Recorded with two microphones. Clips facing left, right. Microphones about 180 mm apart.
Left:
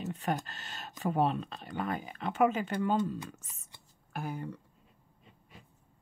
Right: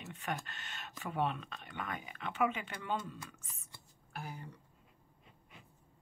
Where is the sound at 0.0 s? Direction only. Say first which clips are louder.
Left 7 dB; 35° left (ahead or behind).